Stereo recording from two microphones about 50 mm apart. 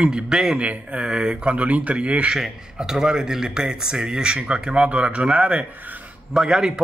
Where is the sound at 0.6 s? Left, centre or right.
Right.